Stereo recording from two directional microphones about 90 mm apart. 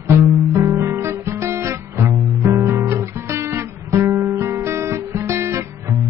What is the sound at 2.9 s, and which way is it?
Guitar, 30° right (ahead or behind).